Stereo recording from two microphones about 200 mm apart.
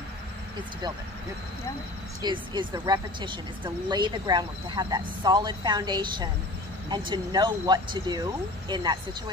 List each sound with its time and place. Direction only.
2.2 s a woman's voice: 20° right (ahead or behind)